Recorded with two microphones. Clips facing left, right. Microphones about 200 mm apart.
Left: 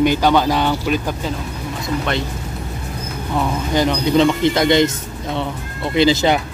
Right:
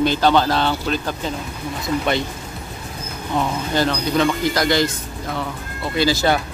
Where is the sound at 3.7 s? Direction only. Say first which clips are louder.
Left 4 dB; 20° left (ahead or behind).